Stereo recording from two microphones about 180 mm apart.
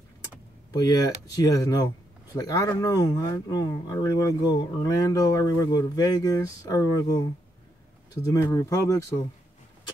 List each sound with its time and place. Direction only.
0.7 s speech: 20° left (ahead or behind)